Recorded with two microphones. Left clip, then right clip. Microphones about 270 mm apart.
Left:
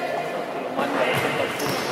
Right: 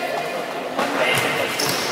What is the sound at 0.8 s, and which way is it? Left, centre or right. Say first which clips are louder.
Music: right 3 dB; centre.